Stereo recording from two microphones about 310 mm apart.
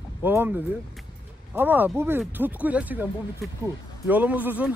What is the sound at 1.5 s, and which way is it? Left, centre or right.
Speech, centre.